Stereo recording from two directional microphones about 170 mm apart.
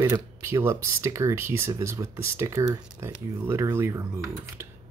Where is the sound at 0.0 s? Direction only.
15° right (ahead or behind).